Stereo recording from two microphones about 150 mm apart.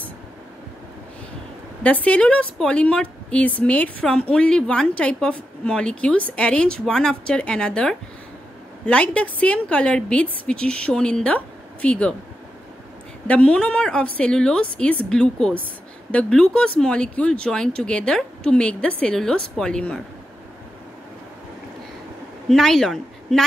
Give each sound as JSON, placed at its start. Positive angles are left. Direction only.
{"t": 1.8, "sound": "a woman's voice", "side_deg": 10}
{"t": 13.3, "sound": "a woman's voice", "side_deg": 10}
{"t": 22.5, "sound": "a woman's voice", "side_deg": 0}